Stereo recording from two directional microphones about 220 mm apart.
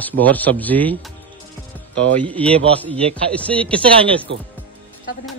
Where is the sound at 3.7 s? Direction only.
25° right (ahead or behind).